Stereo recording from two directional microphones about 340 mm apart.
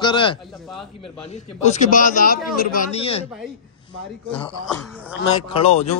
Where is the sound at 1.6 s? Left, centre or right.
Left.